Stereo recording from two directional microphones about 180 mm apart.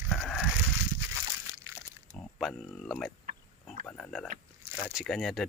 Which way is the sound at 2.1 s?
5° left (ahead or behind).